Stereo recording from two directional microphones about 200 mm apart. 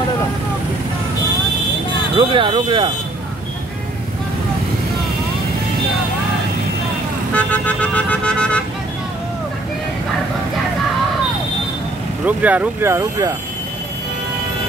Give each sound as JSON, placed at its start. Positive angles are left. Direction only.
{"t": 2.1, "sound": "speech", "side_deg": -25}
{"t": 7.3, "sound": "vehicle", "side_deg": 5}
{"t": 12.3, "sound": "speech", "side_deg": -5}